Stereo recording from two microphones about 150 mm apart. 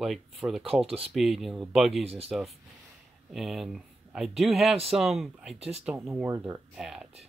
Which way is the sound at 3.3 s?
Centre (ahead or behind).